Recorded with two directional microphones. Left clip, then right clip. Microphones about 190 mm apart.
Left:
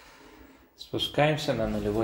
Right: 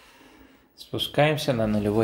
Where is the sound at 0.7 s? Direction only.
20° right (ahead or behind).